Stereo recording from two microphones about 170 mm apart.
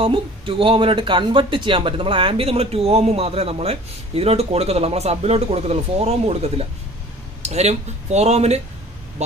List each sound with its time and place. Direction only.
0.0 s speech: 30° right (ahead or behind)